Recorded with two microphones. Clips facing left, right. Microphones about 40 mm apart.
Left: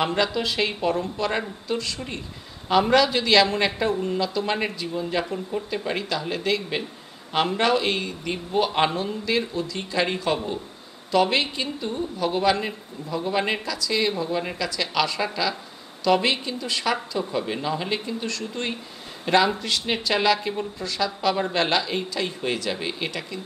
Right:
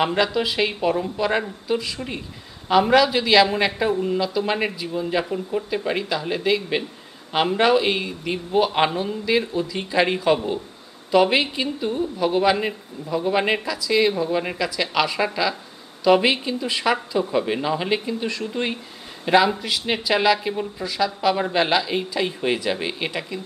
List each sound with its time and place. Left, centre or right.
0.0 s speech: centre